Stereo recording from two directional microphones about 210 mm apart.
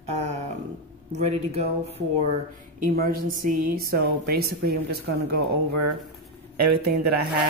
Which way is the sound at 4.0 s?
50° right (ahead or behind).